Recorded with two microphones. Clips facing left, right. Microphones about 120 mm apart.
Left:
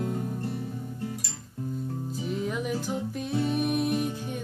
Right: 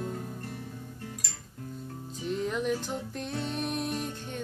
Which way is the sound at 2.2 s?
5° left (ahead or behind).